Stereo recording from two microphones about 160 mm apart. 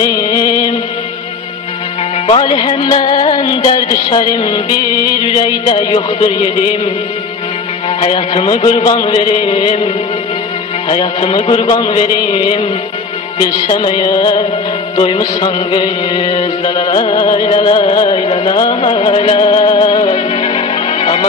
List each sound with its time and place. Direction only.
0.0 s music: 35° left (ahead or behind)
2.2 s music: 35° left (ahead or behind)
8.0 s music: 35° left (ahead or behind)
10.9 s music: 40° left (ahead or behind)
13.7 s music: 35° left (ahead or behind)